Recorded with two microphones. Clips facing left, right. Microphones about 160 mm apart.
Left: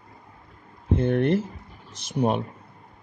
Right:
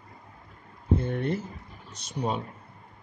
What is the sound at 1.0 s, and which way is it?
Speech, 85° left.